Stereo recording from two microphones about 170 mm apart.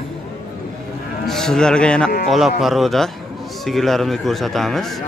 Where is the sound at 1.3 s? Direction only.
5° left (ahead or behind).